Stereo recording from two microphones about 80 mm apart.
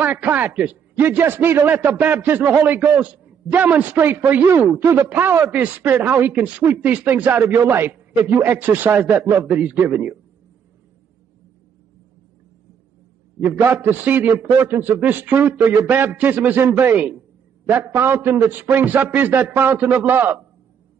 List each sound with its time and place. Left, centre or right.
0.0 s a man's voice: right
9.5 s a man's voice: centre
13.6 s a man's voice: right